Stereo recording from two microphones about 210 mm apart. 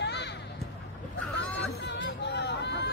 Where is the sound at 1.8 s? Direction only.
55° left (ahead or behind).